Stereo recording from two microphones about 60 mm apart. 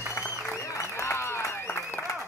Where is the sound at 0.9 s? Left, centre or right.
Left.